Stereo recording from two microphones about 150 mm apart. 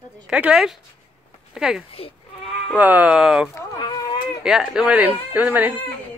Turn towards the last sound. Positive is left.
turn(degrees=-10)  # may be behind; listen again after turning